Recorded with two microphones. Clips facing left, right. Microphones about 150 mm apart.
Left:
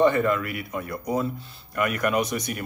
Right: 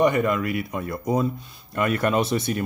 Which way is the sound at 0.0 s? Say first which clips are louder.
Even; 15° right (ahead or behind).